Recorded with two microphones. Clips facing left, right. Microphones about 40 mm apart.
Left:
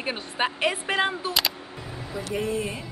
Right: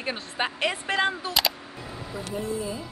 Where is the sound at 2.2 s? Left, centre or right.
Left.